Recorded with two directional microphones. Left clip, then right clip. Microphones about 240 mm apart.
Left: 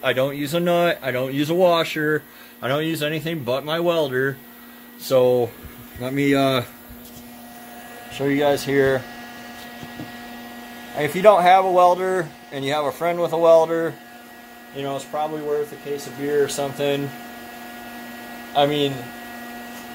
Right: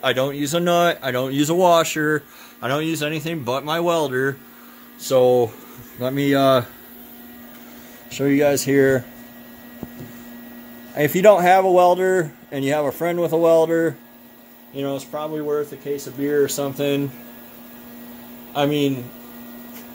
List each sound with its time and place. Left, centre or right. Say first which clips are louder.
0.0 s speech: right 1 dB; centre
8.2 s speech: right 2 dB; right
11.0 s speech: right 1 dB; right
16.4 s speech: even; right
18.5 s speech: left 2 dB; right